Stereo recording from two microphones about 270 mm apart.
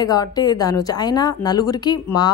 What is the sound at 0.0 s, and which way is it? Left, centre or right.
A woman's voice, centre.